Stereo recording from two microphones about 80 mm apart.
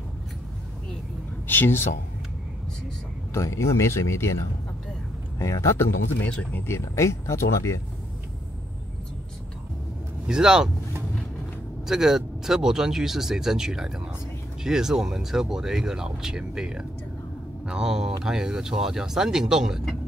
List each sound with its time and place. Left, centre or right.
1.5 s speech: left
3.3 s speech: left
5.4 s speech: left
6.2 s speech: left
6.8 s speech: left
10.2 s speech: centre
11.9 s speech: centre